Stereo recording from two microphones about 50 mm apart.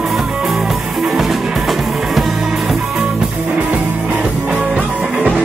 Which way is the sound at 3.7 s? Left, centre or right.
Right.